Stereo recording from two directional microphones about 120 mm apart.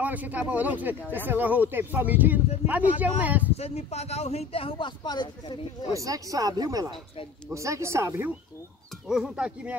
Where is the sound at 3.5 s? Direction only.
60° left (ahead or behind); by 5.6 s 40° left (ahead or behind).